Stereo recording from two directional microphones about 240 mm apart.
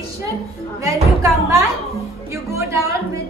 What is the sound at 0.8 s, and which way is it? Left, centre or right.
A woman's voice, centre.